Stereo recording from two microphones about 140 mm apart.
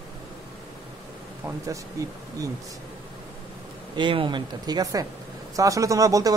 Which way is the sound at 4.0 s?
35° right (ahead or behind).